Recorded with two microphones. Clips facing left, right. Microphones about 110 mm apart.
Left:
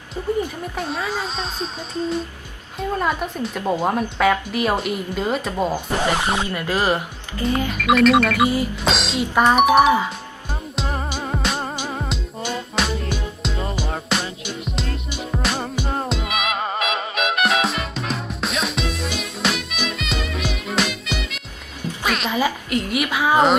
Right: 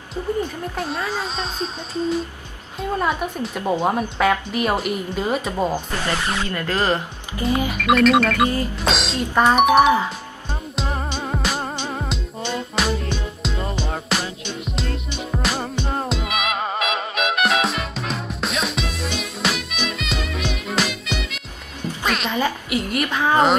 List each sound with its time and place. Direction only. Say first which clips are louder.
0.7 s speech: even; centre (ahead or behind)
5.9 s speech: left 4 dB; 20° left (ahead or behind)
7.3 s speech: even; 10° right (ahead or behind)
7.8 s speech: left 1 dB; centre (ahead or behind)
10.8 s music: even; centre (ahead or behind)
22.0 s cat: left 1 dB; centre (ahead or behind)
22.7 s speech: left 1 dB; centre (ahead or behind)